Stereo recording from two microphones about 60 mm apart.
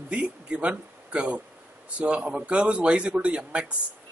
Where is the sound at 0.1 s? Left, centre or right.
Centre.